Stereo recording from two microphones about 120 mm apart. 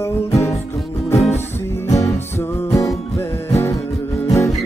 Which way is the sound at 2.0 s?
25° left (ahead or behind).